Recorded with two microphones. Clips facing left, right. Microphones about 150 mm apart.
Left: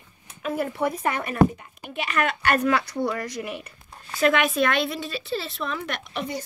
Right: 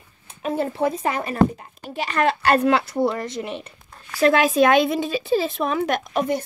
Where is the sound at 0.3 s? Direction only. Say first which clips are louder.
Right 3 dB; 30° right (ahead or behind).